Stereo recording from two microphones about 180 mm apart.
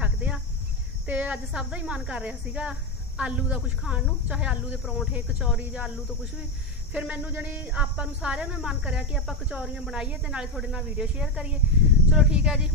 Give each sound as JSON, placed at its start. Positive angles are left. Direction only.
{"t": 0.0, "sound": "cricket", "side_deg": -5}
{"t": 1.0, "sound": "a woman's voice", "side_deg": -10}